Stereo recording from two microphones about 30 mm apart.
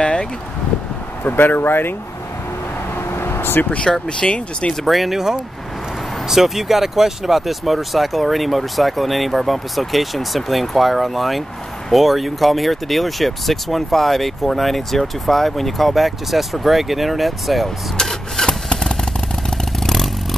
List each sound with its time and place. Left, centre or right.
0.0 s a sound: left
1.2 s speech: left
3.6 s speech: left
4.2 s speech: left
4.8 s speech: centre
5.1 s speech: centre
18.0 s rub: centre
18.7 s vehicle: left